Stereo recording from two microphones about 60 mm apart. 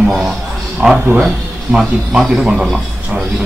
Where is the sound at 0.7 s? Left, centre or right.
Centre.